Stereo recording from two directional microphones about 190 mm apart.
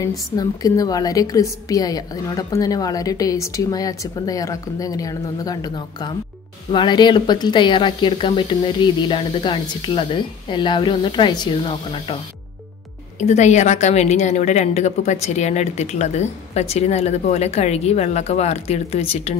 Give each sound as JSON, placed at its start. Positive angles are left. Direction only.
{"t": 0.4, "sound": "a woman's voice", "side_deg": 20}
{"t": 13.2, "sound": "a woman's voice", "side_deg": 35}